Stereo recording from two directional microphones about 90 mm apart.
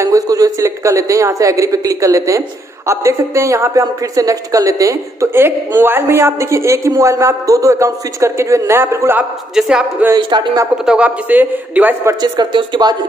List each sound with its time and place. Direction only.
0.0 s a man's voice: 40° right (ahead or behind)
9.6 s speech: 5° right (ahead or behind)
10.1 s speech: 50° right (ahead or behind)
10.9 s a man's voice: 15° right (ahead or behind)
12.2 s speech: 55° right (ahead or behind)